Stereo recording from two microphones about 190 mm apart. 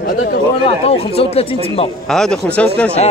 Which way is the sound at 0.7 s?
30° left (ahead or behind).